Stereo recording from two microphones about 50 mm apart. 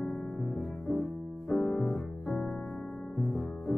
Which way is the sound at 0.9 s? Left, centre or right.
Centre.